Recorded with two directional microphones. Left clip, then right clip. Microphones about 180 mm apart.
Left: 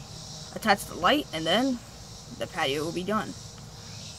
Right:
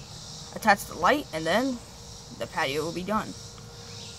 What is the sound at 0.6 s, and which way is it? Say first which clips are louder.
Speech: right 2 dB; 20° right (ahead or behind).